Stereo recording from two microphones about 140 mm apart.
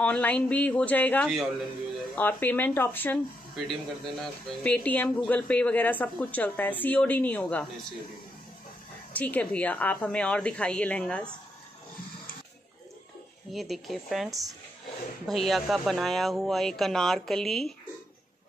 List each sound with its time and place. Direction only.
0.0 s speech: 10° left (ahead or behind)
1.3 s speech: centre (ahead or behind)
2.1 s speech: 15° left (ahead or behind)
3.5 s speech: centre (ahead or behind)
9.1 s speech: 10° left (ahead or behind)
13.5 s speech: centre (ahead or behind)